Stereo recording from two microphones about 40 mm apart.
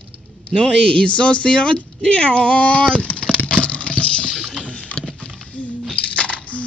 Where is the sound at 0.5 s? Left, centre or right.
Left.